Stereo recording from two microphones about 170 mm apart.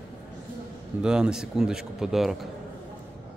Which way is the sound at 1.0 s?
5° right (ahead or behind).